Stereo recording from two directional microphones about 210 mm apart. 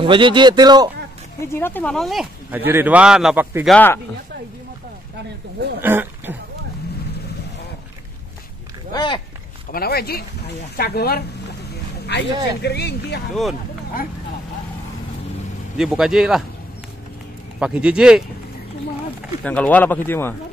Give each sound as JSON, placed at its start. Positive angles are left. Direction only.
{"t": 0.0, "sound": "a man's voice", "side_deg": -25}
{"t": 1.5, "sound": "speech", "side_deg": 10}
{"t": 3.7, "sound": "a man's voice", "side_deg": 10}
{"t": 5.8, "sound": "speech", "side_deg": -10}
{"t": 8.9, "sound": "speech", "side_deg": 20}
{"t": 9.7, "sound": "speech", "side_deg": 45}
{"t": 13.3, "sound": "speech", "side_deg": 0}
{"t": 15.8, "sound": "speech", "side_deg": 0}
{"t": 17.6, "sound": "speech", "side_deg": -5}
{"t": 19.4, "sound": "a man's voice", "side_deg": 5}